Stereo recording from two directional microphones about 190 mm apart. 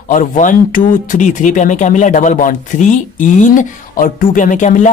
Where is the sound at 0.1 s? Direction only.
45° left (ahead or behind).